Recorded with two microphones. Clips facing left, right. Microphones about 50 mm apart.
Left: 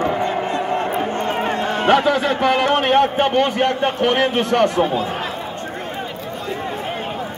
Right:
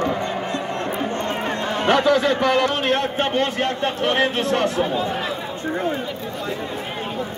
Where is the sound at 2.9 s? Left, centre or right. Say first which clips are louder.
Left 5 dB; left.